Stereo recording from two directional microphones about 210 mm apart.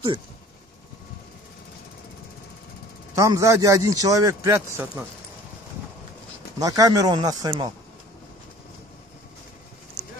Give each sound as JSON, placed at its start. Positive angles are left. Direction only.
{"t": 3.2, "sound": "a man's voice", "side_deg": -15}
{"t": 6.6, "sound": "a man's voice", "side_deg": -15}